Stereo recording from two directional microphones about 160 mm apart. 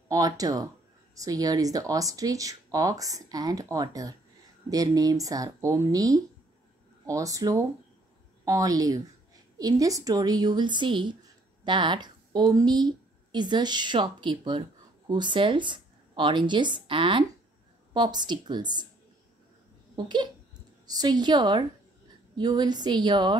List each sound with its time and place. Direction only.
0.1 s a woman's voice: 20° right (ahead or behind)
20.0 s speech: 25° right (ahead or behind)